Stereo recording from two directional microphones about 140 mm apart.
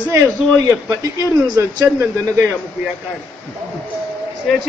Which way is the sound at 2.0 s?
15° right (ahead or behind).